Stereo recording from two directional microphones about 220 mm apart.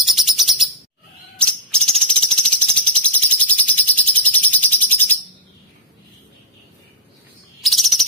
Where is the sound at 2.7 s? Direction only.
5° left (ahead or behind).